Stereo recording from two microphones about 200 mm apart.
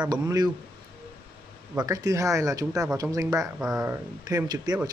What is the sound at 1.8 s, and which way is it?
Speech, 15° right (ahead or behind).